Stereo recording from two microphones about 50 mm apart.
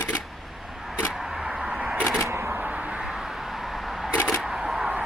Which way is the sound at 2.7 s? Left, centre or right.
Right.